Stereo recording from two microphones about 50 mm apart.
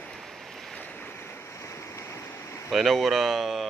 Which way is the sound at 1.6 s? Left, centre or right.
Left.